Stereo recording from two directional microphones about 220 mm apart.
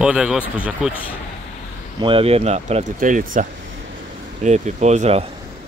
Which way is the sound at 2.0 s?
25° right (ahead or behind).